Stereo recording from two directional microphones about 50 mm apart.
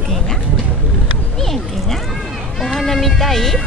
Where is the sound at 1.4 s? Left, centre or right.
Centre.